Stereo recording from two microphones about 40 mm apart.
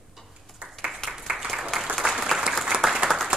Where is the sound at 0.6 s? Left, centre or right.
Right.